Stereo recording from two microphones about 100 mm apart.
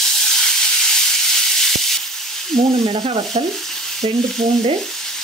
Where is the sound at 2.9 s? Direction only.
45° right (ahead or behind).